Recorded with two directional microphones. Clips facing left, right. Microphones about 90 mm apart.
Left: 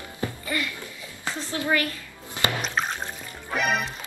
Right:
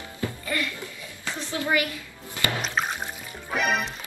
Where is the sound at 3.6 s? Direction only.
Centre (ahead or behind).